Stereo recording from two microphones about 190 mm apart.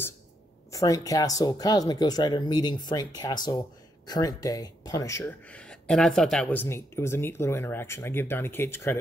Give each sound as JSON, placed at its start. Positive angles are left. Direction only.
{"t": 0.7, "sound": "speech", "side_deg": 20}